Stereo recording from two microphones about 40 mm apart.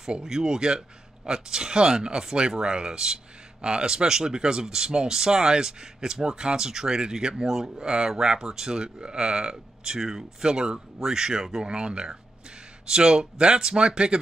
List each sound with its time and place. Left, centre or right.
0.2 s speech: centre